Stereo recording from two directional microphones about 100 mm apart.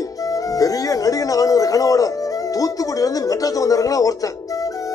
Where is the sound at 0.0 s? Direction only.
35° left (ahead or behind).